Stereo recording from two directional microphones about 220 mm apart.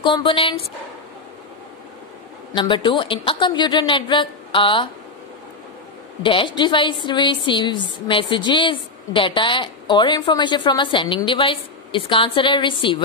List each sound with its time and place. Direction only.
0.0 s a woman's voice: 25° left (ahead or behind)
2.5 s a woman's voice: 20° left (ahead or behind)
6.2 s a woman's voice: 20° left (ahead or behind)